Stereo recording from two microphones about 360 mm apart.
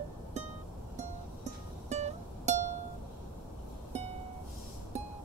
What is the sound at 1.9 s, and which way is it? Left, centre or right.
Music, centre.